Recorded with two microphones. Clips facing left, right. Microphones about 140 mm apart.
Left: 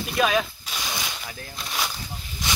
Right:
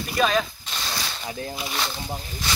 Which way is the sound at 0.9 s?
10° left (ahead or behind).